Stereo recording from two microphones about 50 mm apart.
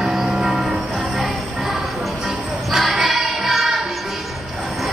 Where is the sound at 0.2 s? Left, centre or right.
Centre.